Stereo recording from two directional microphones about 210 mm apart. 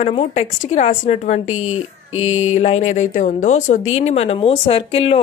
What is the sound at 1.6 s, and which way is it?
Speech, 80° left.